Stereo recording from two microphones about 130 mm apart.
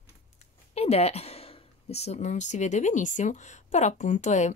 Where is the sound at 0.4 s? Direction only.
50° left (ahead or behind).